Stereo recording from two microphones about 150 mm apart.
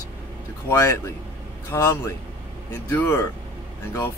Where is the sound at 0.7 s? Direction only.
20° left (ahead or behind).